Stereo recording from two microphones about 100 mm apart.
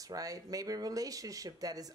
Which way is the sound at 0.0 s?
35° right (ahead or behind).